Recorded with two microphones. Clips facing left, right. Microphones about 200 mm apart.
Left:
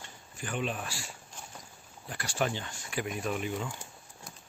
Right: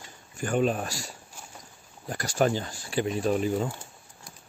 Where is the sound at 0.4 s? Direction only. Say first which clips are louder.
Right 9 dB; 45° right (ahead or behind).